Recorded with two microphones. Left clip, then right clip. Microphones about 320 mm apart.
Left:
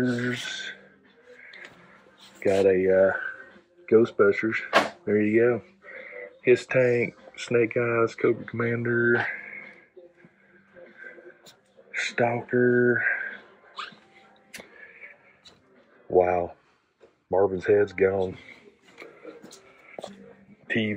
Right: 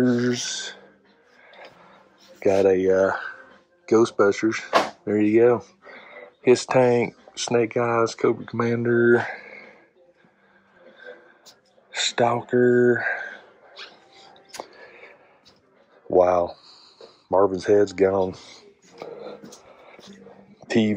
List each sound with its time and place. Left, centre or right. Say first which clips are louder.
0.1 s speech: right 5 dB; right
2.4 s speech: right 3 dB; centre
12.0 s speech: right 4 dB; centre
16.2 s speech: right 4 dB; centre